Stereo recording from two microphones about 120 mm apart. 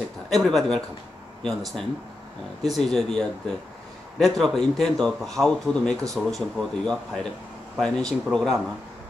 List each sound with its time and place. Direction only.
0.3 s a man's voice: centre (ahead or behind)